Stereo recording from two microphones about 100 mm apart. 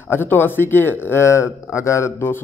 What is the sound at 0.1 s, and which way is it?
A man's voice, 20° left (ahead or behind).